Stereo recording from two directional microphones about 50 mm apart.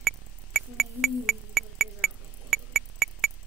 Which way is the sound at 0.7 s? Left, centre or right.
Centre.